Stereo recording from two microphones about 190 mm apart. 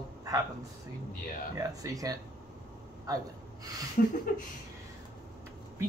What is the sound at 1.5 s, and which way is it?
A man's voice, 20° right (ahead or behind).